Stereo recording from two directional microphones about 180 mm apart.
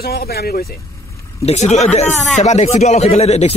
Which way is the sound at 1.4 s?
40° left (ahead or behind).